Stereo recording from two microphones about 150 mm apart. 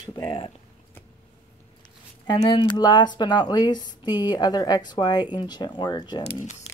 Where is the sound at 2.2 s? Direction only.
30° left (ahead or behind).